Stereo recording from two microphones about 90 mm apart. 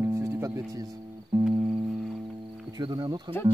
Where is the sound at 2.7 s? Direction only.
55° right (ahead or behind).